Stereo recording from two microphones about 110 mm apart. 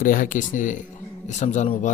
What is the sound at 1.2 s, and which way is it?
Speech, 90° left.